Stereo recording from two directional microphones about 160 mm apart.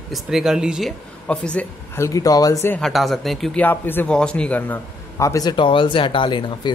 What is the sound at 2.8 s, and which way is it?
A man's voice, centre (ahead or behind).